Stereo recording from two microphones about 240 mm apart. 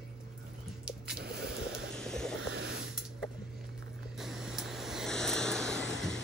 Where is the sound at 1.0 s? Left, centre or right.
Right.